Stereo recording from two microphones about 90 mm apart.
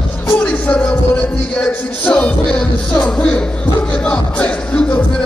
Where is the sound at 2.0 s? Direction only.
10° left (ahead or behind).